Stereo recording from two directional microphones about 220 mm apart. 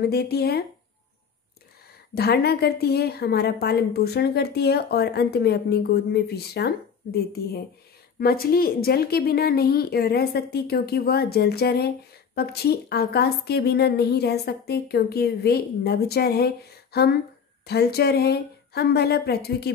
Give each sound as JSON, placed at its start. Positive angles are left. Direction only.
{"t": 0.0, "sound": "a woman's voice", "side_deg": 45}
{"t": 2.1, "sound": "a woman's voice", "side_deg": 45}